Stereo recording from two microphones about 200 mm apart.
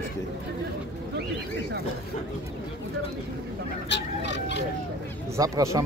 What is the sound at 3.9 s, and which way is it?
Chicken, 60° left (ahead or behind).